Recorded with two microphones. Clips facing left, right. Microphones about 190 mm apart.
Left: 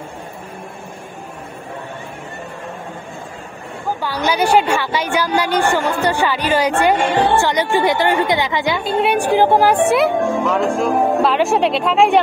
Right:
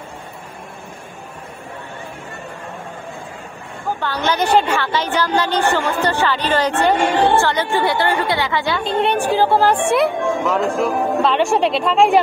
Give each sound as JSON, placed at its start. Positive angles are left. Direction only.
{"t": 4.0, "sound": "a woman's voice", "side_deg": 10}
{"t": 9.9, "sound": "speech", "side_deg": 0}